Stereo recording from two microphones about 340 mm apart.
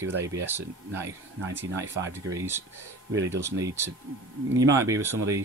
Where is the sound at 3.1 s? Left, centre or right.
Right.